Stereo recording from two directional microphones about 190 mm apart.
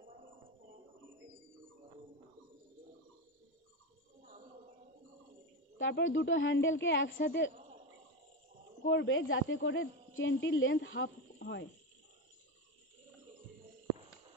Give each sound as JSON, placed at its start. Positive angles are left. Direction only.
{"t": 5.8, "sound": "speech", "side_deg": 80}
{"t": 8.8, "sound": "speech", "side_deg": 85}